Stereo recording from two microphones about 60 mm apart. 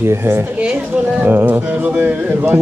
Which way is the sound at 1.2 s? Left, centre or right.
Right.